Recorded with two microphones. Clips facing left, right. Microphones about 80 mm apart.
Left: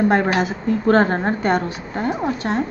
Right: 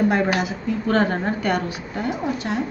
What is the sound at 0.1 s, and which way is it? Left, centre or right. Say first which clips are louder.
A woman's voice: left 3 dB; left.